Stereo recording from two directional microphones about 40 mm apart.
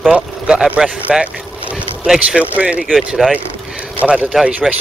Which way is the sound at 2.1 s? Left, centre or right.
Right.